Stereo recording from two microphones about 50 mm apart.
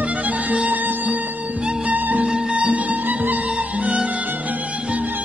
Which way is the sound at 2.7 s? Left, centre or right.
Right.